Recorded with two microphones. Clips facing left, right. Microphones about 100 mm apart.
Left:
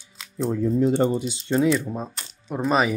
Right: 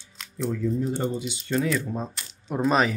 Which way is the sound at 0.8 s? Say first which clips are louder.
Left 7 dB; 75° left (ahead or behind).